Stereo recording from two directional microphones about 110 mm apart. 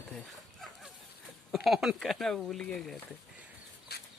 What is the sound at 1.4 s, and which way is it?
A man's voice, centre (ahead or behind).